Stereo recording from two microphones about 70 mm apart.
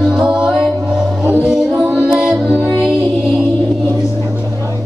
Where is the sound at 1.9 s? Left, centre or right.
Centre.